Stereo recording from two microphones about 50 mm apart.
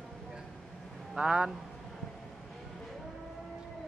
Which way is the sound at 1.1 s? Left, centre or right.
Centre.